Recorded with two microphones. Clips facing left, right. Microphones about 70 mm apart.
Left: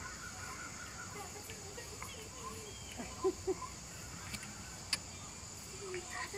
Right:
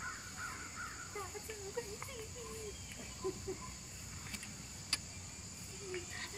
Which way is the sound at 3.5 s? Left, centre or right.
Left.